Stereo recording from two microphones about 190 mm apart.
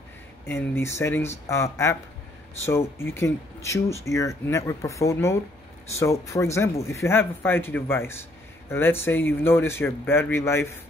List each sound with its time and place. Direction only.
0.5 s speech: 10° left (ahead or behind)